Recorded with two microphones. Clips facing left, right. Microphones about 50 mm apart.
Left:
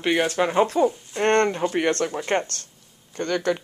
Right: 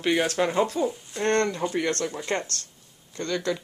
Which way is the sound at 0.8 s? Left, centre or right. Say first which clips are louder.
Left 6 dB; left.